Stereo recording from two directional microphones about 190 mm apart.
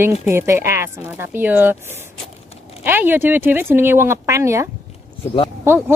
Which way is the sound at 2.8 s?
10° right (ahead or behind).